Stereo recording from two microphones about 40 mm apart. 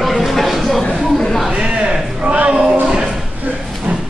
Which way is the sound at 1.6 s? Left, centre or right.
Right.